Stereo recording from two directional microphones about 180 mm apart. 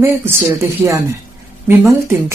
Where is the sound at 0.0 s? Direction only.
15° right (ahead or behind).